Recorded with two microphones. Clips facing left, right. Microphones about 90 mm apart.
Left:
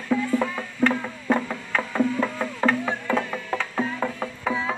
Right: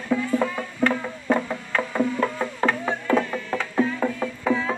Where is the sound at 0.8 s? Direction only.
20° left (ahead or behind).